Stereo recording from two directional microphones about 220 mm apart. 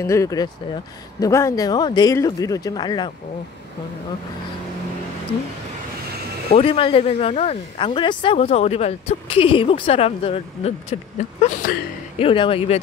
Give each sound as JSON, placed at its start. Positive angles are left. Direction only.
{"t": 0.0, "sound": "speech", "side_deg": 15}
{"t": 6.5, "sound": "speech", "side_deg": 25}
{"t": 12.2, "sound": "speech", "side_deg": 25}